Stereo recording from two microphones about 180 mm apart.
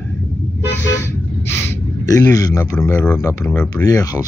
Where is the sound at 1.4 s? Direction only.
15° left (ahead or behind).